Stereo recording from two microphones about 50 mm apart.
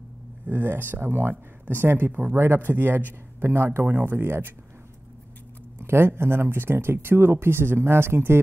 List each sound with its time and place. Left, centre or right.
0.5 s speech: right
3.4 s speech: right
3.8 s speech: right
5.8 s speech: right